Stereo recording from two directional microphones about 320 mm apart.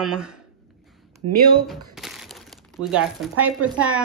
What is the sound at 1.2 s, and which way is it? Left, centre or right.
Speech, right.